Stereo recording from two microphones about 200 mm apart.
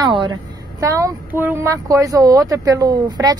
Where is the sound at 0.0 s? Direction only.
20° right (ahead or behind).